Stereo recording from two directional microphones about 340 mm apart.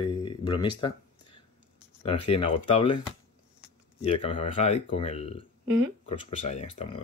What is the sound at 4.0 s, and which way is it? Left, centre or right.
Speech, centre.